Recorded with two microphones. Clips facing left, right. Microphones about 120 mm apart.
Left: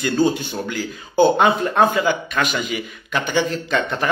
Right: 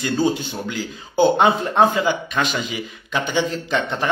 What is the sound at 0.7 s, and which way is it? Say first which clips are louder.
A man's voice: left 1 dB; 20° right (ahead or behind).